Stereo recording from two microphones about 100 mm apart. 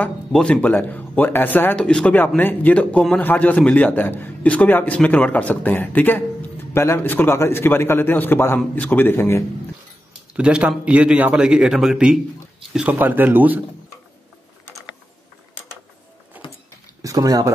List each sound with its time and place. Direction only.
0.0 s a man's voice: 10° left (ahead or behind)
10.3 s a man's voice: 10° right (ahead or behind)
12.7 s a man's voice: 15° right (ahead or behind)
16.3 s a sound: 15° right (ahead or behind)
17.0 s speech: 35° right (ahead or behind)